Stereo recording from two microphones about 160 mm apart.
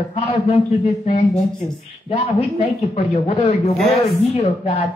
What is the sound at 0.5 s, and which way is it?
Speech, 45° left (ahead or behind).